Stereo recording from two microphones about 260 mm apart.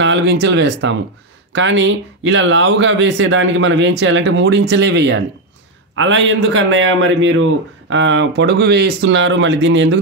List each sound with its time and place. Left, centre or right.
0.0 s speech: right